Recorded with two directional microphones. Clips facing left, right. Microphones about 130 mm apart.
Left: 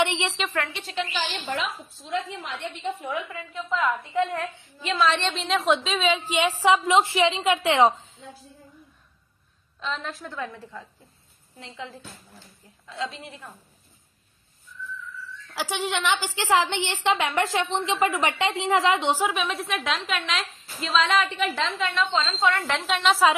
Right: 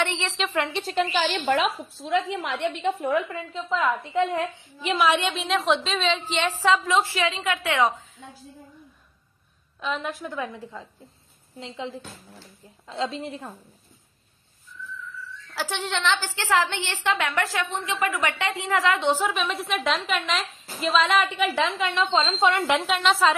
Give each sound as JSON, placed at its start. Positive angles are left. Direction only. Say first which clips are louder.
{"t": 0.0, "sound": "a woman's voice", "louder": "left 3 dB", "side_deg": 15}
{"t": 0.7, "sound": "a woman's voice", "louder": "right 7 dB", "side_deg": -30}
{"t": 0.9, "sound": "a woman's voice", "louder": "right 5 dB", "side_deg": -50}
{"t": 3.0, "sound": "a woman's voice", "louder": "right 6 dB", "side_deg": -40}
{"t": 9.8, "sound": "a woman's voice", "louder": "right 3 dB", "side_deg": -10}
{"t": 15.5, "sound": "a woman's voice", "louder": "left 1 dB", "side_deg": 10}
{"t": 19.3, "sound": "a woman's voice", "louder": "right 1 dB", "side_deg": 0}
{"t": 22.8, "sound": "a woman's voice", "louder": "even", "side_deg": 0}